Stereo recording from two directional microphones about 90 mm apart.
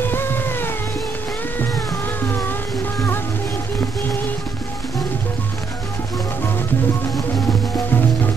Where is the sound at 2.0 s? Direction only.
20° left (ahead or behind).